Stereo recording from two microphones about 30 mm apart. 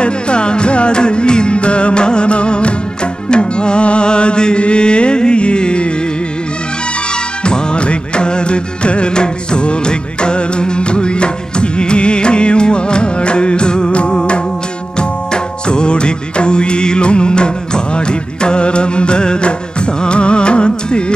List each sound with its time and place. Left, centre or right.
0.0 s music: left
7.4 s music: left